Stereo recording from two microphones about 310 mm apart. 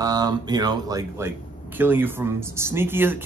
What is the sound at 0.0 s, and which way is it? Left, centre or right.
Speech, centre.